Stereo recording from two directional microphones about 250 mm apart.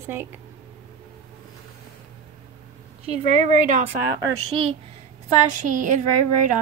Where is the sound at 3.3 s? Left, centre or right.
Right.